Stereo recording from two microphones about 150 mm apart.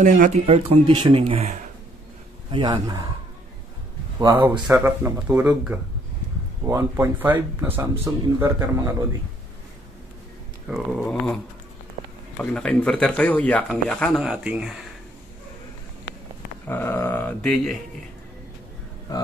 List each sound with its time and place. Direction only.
0.0 s speech: 55° right (ahead or behind)
0.5 s speech: 40° right (ahead or behind)
2.5 s a man's voice: 25° right (ahead or behind)
4.3 s speech: 15° right (ahead or behind)
10.7 s speech: 5° left (ahead or behind)
12.4 s speech: 5° left (ahead or behind)
14.2 s speech: 5° right (ahead or behind)
16.6 s speech: 15° left (ahead or behind)